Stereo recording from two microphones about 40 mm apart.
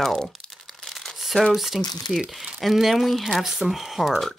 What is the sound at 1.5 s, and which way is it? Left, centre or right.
Speech, centre.